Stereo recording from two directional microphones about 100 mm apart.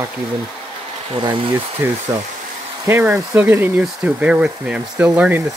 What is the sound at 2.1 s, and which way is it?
Speech, 30° right (ahead or behind).